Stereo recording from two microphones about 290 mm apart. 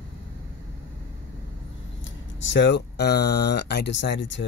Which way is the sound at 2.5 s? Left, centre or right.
Left.